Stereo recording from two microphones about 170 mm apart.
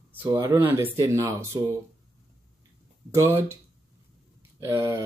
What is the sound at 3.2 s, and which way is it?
Speech, 15° right (ahead or behind).